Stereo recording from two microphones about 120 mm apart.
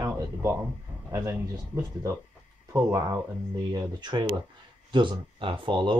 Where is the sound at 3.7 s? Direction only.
35° right (ahead or behind).